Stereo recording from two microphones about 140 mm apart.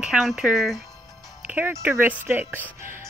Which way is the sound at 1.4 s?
15° right (ahead or behind).